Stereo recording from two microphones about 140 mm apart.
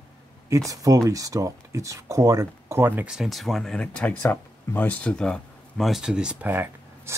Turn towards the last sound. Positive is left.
turn(degrees=-15)  # may be behind; listen again after turning